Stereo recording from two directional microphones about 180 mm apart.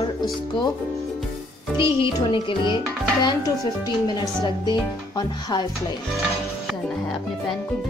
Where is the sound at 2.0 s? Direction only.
25° left (ahead or behind).